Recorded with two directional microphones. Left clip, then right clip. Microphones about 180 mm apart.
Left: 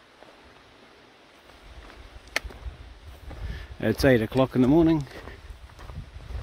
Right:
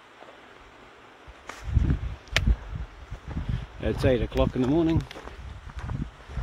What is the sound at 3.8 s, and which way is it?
Speech, 50° left (ahead or behind).